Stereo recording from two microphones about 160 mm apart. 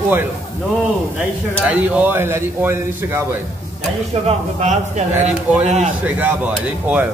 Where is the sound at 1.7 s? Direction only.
10° right (ahead or behind).